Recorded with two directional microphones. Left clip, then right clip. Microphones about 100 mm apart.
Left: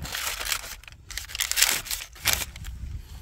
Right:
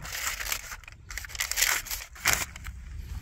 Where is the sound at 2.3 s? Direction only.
35° left (ahead or behind).